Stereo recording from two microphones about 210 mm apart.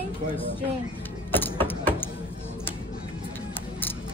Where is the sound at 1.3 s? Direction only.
10° left (ahead or behind).